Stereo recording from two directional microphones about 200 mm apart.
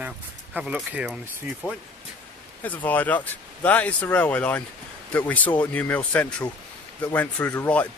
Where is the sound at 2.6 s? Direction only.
10° left (ahead or behind).